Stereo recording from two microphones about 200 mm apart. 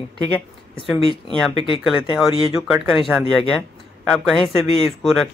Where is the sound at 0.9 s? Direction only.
25° left (ahead or behind).